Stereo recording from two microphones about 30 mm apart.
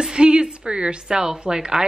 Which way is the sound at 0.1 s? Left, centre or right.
Right.